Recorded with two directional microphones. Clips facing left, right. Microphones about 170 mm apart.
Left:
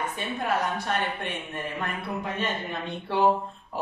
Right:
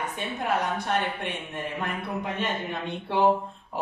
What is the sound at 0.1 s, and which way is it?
A man's voice, 15° right (ahead or behind).